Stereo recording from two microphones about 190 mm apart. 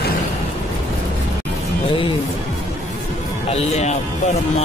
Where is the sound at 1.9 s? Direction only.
25° left (ahead or behind).